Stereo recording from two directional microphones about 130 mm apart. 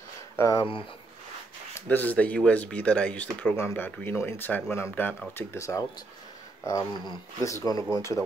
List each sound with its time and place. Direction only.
0.4 s speech: 30° left (ahead or behind)
1.9 s speech: 15° left (ahead or behind)